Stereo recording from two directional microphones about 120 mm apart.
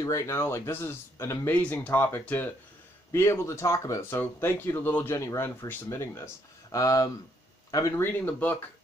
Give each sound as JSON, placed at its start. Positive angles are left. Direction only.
{"t": 0.0, "sound": "speech", "side_deg": 25}
{"t": 8.0, "sound": "speech", "side_deg": 15}